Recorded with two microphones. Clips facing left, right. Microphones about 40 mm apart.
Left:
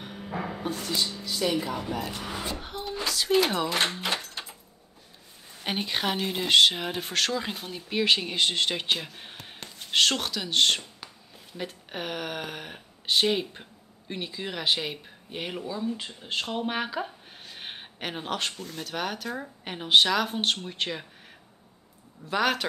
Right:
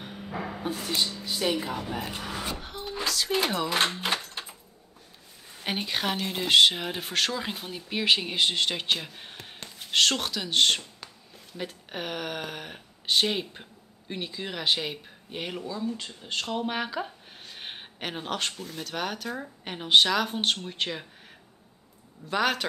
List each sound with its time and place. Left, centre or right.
0.0 s a sound: centre
0.7 s a woman's voice: centre
1.5 s a woman's voice: centre
2.0 s speech: right
2.2 s speech: centre
3.9 s door: centre
5.6 s speech: centre
15.6 s speech: centre
22.2 s speech: centre